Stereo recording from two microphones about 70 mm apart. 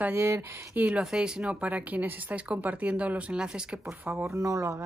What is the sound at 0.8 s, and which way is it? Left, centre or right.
Speech, centre.